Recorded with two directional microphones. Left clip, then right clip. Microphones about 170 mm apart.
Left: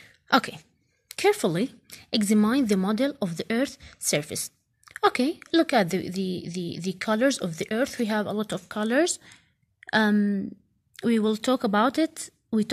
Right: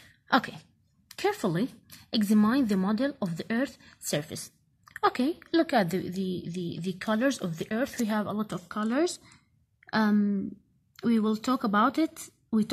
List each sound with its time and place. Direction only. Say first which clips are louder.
0.3 s a sound: left 3 dB; 25° left (ahead or behind)
1.0 s a woman's voice: left 6 dB; 25° left (ahead or behind)
10.1 s speech: left 2 dB; 45° left (ahead or behind)
11.0 s a woman's voice: left 4 dB; 25° left (ahead or behind)